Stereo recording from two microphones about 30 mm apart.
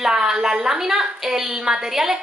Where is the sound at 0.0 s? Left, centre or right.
Right.